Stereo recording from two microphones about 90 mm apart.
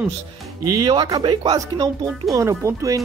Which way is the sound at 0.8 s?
50° right (ahead or behind).